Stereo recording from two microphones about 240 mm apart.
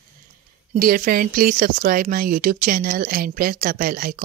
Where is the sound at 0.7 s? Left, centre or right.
Right.